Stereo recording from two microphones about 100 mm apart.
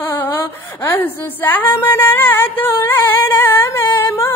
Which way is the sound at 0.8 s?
20° left (ahead or behind).